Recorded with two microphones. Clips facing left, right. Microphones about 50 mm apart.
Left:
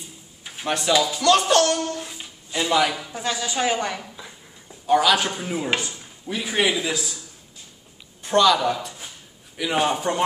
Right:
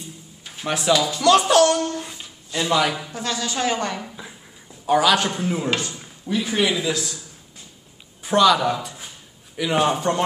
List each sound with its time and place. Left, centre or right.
0.7 s a man's voice: centre
2.1 s a sound: centre
2.8 s a man's voice: centre
3.1 s a woman's voice: centre
4.8 s a man's voice: centre
6.2 s a woman's voice: centre
8.2 s a man's voice: centre